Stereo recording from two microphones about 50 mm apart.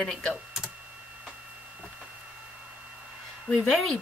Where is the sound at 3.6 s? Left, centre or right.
Centre.